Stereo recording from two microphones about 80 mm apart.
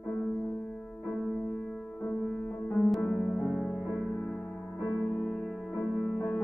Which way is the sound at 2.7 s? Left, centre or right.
Centre.